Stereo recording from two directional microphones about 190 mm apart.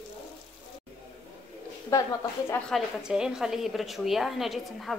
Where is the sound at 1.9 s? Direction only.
15° left (ahead or behind).